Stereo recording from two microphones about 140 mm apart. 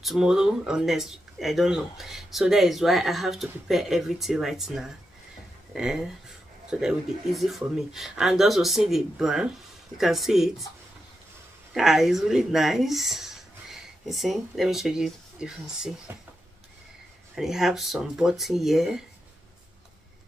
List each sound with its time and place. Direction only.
0.0 s speech: centre (ahead or behind)
11.7 s speech: centre (ahead or behind)
16.1 s speech: 20° right (ahead or behind)
17.4 s speech: 5° right (ahead or behind)